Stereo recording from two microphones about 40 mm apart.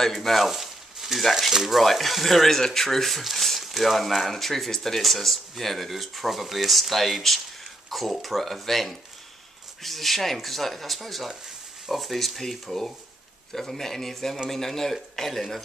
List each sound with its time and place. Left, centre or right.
0.0 s speech: centre
0.5 s a sound: centre
1.5 s speech: centre